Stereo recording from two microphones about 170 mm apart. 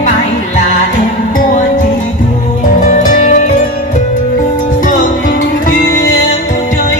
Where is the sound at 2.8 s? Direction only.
45° left (ahead or behind).